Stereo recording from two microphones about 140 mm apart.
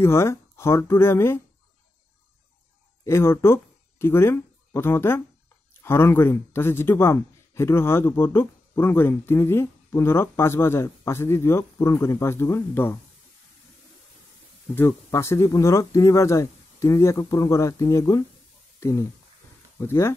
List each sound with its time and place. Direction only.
0.0 s a man's voice: 20° left (ahead or behind)
3.1 s a man's voice: 20° left (ahead or behind)
14.8 s speech: 20° left (ahead or behind)